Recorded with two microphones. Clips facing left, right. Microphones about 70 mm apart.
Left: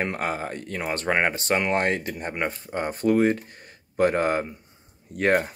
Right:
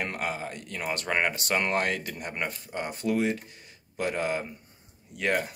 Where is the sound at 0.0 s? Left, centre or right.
Left.